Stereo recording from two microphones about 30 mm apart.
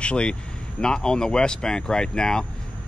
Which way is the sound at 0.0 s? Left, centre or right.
Left.